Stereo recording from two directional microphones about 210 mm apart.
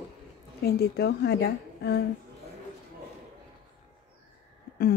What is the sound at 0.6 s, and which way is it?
A woman's voice, 50° left (ahead or behind).